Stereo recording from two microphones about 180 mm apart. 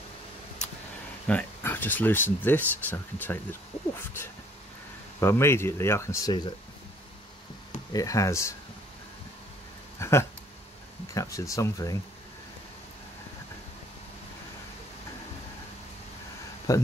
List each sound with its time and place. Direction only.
1.2 s speech: 10° left (ahead or behind)
3.7 s speech: 35° left (ahead or behind)
5.2 s speech: 15° left (ahead or behind)
7.9 s speech: 20° left (ahead or behind)
9.9 s a sound: 15° left (ahead or behind)
11.1 s speech: 15° left (ahead or behind)
16.7 s speech: 20° left (ahead or behind)